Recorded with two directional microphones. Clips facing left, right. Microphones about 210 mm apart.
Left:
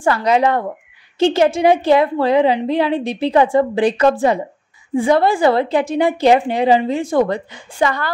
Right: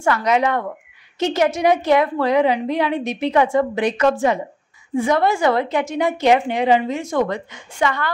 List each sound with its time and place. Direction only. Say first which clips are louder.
0.0 s a woman's voice: left 3 dB; 30° left (ahead or behind)